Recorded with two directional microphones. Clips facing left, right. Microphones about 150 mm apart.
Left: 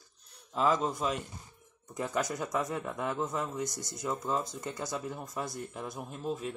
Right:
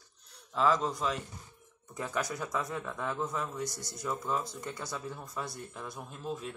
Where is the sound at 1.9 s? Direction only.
20° left (ahead or behind).